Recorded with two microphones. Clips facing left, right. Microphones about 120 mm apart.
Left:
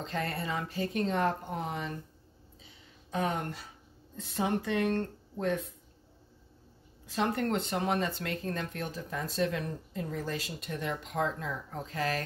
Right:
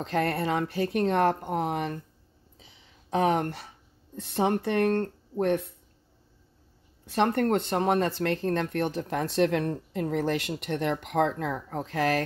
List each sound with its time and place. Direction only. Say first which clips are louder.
0.0 s speech: right 8 dB; 65° right (ahead or behind)
3.1 s speech: right 8 dB; 80° right
7.1 s speech: right 6 dB; 65° right (ahead or behind)
8.1 s speech: right 8 dB; 80° right